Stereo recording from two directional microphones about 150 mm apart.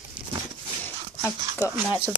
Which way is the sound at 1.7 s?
10° right (ahead or behind).